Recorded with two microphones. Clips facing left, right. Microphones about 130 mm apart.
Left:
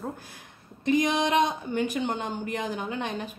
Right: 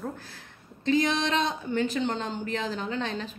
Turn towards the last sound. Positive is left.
turn(degrees=15)  # may be behind; listen again after turning